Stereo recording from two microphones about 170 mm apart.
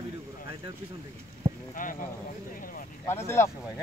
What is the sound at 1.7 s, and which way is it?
Speech, 50° left (ahead or behind).